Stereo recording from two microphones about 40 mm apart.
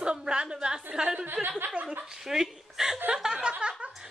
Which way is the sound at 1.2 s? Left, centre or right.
Right.